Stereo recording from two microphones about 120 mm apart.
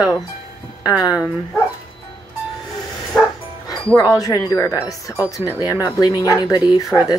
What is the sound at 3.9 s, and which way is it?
Speech, 30° left (ahead or behind).